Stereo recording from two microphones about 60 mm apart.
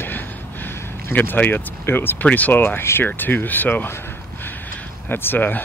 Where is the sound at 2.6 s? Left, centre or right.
Left.